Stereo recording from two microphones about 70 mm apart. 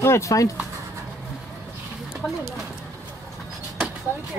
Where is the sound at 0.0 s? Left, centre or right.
Left.